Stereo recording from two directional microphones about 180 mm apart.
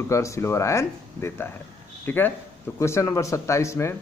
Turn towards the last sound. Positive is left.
turn(degrees=15)  # may be behind; listen again after turning